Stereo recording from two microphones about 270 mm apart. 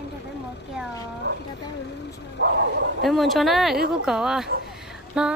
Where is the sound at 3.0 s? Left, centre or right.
Centre.